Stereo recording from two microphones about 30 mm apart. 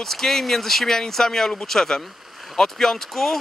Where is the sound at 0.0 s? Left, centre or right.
Centre.